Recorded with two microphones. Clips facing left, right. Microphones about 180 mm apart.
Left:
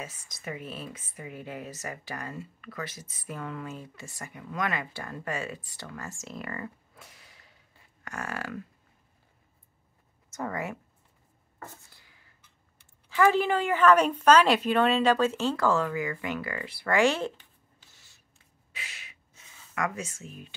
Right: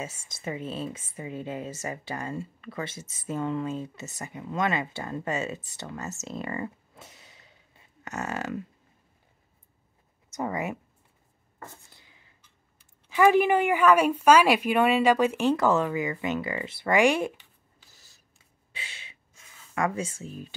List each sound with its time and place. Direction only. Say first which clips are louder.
0.0 s a woman's voice: right 4 dB; 25° right (ahead or behind)
10.3 s a woman's voice: right 3 dB; 20° right (ahead or behind)
11.9 s a sound: right 3 dB; 20° right (ahead or behind)
13.1 s a woman's voice: right 3 dB; 15° right (ahead or behind)
17.9 s a sound: right 2 dB; 35° right (ahead or behind)
18.7 s gasp: right 1 dB; 30° right (ahead or behind)
19.7 s speech: right 4 dB; 30° right (ahead or behind)